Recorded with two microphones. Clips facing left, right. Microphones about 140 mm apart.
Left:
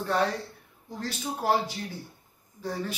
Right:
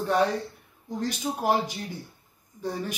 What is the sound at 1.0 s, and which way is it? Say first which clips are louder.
A woman's voice: right 3 dB; 15° right (ahead or behind).